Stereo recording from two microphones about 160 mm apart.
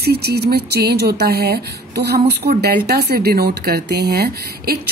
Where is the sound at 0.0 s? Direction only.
90° right.